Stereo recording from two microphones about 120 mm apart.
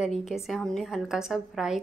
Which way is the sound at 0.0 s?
Centre (ahead or behind).